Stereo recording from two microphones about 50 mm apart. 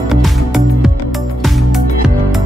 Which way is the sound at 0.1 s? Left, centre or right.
Centre.